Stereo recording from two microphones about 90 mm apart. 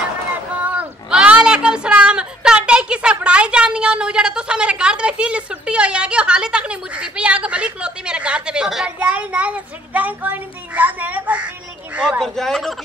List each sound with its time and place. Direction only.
0.6 s a sound: 15° right (ahead or behind)
3.2 s a woman's voice: 10° right (ahead or behind)
12.2 s a man's voice: 5° left (ahead or behind)